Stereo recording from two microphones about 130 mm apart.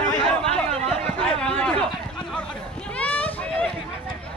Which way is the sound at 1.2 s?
5° left (ahead or behind).